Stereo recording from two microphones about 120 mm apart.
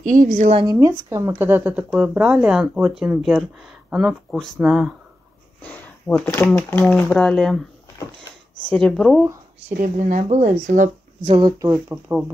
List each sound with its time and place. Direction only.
0.0 s a woman's voice: 90° right
0.7 s speech: 30° right (ahead or behind); by 4.9 s 5° right (ahead or behind)
5.6 s a sound: 15° left (ahead or behind)
6.3 s speech: 15° left (ahead or behind)
6.8 s speech: 5° left (ahead or behind)
8.6 s speech: 5° left (ahead or behind)
9.7 s speech: 90° right; by 10.5 s 75° right (ahead or behind)
10.7 s speech: 90° right
11.7 s speech: 10° right (ahead or behind)